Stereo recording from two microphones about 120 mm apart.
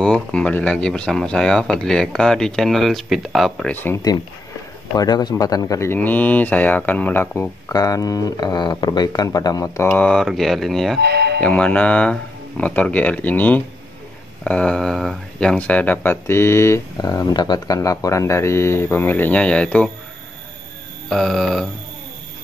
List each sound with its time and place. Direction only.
0.0 s speech: 10° left (ahead or behind)
3.7 s speech: 15° left (ahead or behind)
4.9 s speech: 35° left (ahead or behind)
5.9 s speech: 15° left (ahead or behind); by 9.8 s 30° left (ahead or behind)
9.8 s speech: 10° left (ahead or behind)
21.1 s speech: centre (ahead or behind)